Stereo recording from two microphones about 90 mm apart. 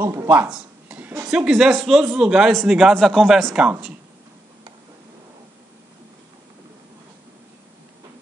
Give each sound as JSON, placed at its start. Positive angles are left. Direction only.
{"t": 0.0, "sound": "speech", "side_deg": -35}
{"t": 0.5, "sound": "a sound", "side_deg": -15}
{"t": 1.2, "sound": "speech", "side_deg": -5}